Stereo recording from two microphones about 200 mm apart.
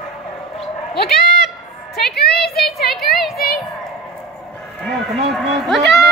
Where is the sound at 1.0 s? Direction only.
50° left (ahead or behind).